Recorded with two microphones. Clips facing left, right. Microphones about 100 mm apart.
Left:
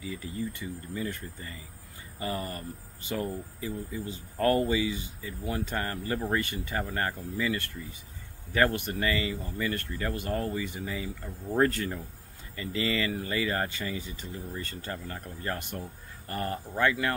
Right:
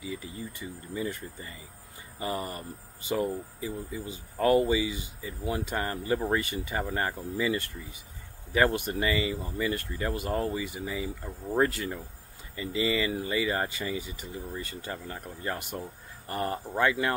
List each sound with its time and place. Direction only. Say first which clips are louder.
0.0 s speech: left 2 dB; 15° right (ahead or behind)